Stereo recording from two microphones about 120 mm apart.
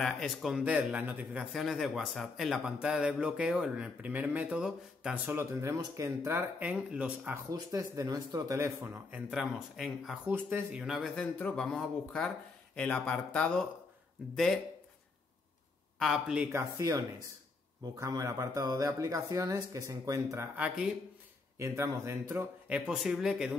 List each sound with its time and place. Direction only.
0.0 s a man's voice: centre (ahead or behind)
1.4 s a man's voice: centre (ahead or behind); by 6.4 s 25° right (ahead or behind)
6.6 s a man's voice: 10° right (ahead or behind)
7.5 s speech: 30° right (ahead or behind)
9.3 s speech: centre (ahead or behind)
10.2 s a man's voice: 15° right (ahead or behind)
11.0 s speech: 5° left (ahead or behind)
16.0 s speech: 5° right (ahead or behind)
16.5 s speech: 30° right (ahead or behind)
20.5 s a man's voice: 10° right (ahead or behind)
21.5 s speech: 25° right (ahead or behind)
22.8 s speech: 5° right (ahead or behind)